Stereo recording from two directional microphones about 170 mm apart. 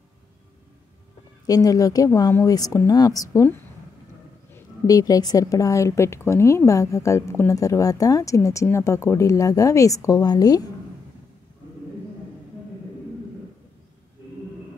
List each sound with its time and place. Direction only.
1.4 s speech: 20° left (ahead or behind)
4.6 s speech: 20° left (ahead or behind)